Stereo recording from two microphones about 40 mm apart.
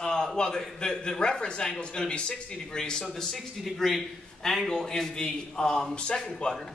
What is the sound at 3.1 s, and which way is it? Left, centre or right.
A man's voice, centre.